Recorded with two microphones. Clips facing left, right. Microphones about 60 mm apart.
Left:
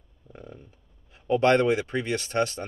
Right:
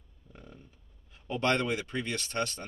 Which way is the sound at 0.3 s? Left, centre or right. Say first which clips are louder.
Left 7 dB; left.